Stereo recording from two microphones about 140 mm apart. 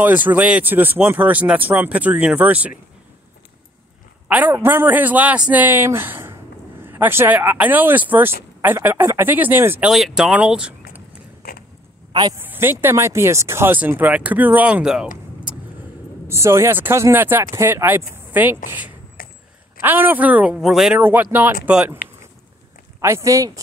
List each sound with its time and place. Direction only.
0.0 s speech: 10° right (ahead or behind)
4.3 s speech: 10° right (ahead or behind)
9.8 s speech: 5° right (ahead or behind)
12.1 s a woman's voice: 30° right (ahead or behind)
12.4 s speech: 15° right (ahead or behind)
16.3 s speech: 20° right (ahead or behind)
19.2 s a sound: 90° left
19.8 s speech: 15° right (ahead or behind)
21.0 s speech: 15° right (ahead or behind)
22.9 s speech: 20° right (ahead or behind)